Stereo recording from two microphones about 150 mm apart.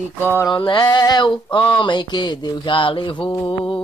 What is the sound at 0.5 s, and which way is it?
Mantra, 30° left (ahead or behind).